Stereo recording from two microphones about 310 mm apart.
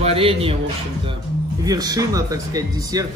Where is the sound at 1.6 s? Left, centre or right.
Centre.